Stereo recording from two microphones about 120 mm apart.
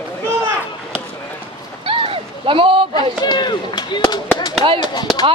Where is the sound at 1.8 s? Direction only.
50° right (ahead or behind).